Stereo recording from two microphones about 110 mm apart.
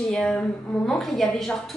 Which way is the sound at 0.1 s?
10° left (ahead or behind).